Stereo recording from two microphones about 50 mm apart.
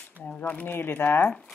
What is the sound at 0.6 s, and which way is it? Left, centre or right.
Speech, left.